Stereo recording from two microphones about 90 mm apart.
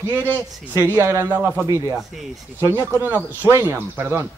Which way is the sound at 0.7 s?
30° right (ahead or behind).